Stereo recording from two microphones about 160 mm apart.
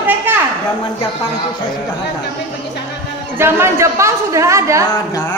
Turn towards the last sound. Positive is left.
turn(degrees=-20)  # may be behind; listen again after turning